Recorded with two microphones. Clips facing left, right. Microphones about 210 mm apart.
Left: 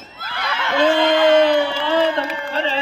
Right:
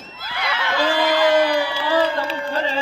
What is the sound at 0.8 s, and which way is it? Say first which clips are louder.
A man's voice: left 4 dB; 25° left (ahead or behind).